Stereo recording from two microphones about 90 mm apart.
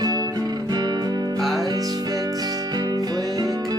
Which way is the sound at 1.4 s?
Centre (ahead or behind).